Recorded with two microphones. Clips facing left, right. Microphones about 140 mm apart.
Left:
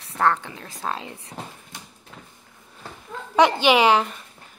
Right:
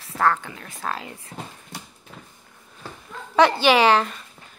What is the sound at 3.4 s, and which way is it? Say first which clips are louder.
Speech: even; 15° left (ahead or behind).